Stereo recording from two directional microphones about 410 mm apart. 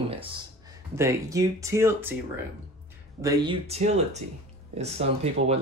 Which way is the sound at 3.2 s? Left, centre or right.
Centre.